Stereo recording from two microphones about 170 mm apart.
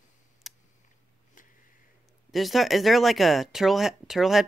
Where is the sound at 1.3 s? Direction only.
50° left (ahead or behind).